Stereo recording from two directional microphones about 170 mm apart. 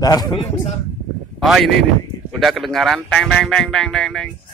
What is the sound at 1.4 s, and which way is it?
Speech, centre (ahead or behind).